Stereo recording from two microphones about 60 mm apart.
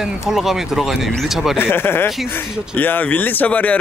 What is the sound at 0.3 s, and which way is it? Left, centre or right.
Speech, centre.